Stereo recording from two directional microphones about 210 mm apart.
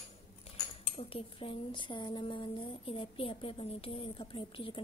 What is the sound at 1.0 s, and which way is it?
A woman's voice, 25° left (ahead or behind).